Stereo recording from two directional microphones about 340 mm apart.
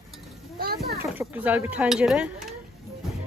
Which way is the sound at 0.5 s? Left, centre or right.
Right.